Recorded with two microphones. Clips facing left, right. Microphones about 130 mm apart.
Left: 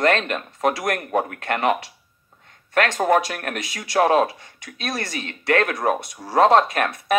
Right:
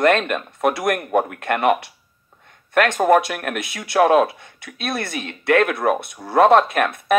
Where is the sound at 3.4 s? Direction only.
45° left (ahead or behind).